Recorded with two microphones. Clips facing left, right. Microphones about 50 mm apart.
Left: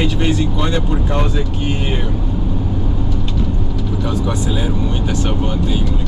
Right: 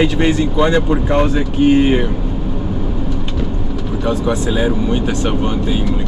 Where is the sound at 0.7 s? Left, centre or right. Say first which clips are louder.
Right 5 dB; right.